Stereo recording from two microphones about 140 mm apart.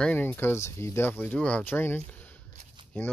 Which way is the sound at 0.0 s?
15° left (ahead or behind).